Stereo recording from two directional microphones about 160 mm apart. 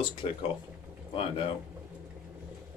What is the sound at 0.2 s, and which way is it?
Speech, 35° left (ahead or behind).